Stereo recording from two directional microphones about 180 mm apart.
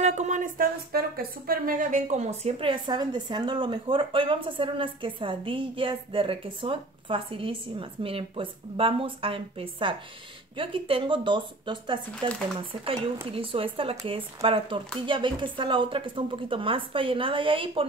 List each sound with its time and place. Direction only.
0.0 s speech: 40° right (ahead or behind)